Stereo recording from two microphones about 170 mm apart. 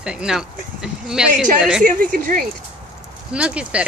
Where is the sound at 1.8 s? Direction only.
55° right (ahead or behind).